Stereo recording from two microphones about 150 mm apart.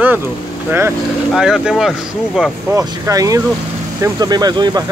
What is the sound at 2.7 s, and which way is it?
Speech, 20° right (ahead or behind).